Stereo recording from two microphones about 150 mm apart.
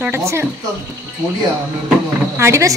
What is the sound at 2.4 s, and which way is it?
Speech, 20° right (ahead or behind).